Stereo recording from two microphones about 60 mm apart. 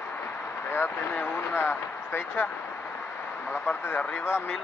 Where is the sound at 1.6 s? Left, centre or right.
Left.